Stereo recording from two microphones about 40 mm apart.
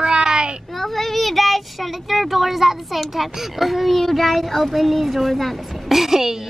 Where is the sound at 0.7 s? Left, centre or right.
Centre.